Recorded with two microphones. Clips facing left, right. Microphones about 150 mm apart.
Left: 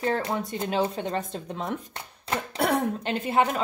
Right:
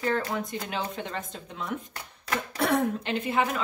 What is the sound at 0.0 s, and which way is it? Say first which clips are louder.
A woman's voice: left 1 dB; 35° left (ahead or behind).